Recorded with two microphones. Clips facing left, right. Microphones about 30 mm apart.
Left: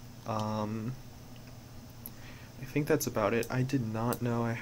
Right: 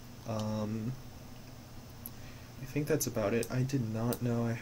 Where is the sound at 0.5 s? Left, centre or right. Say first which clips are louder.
Left 1 dB; centre.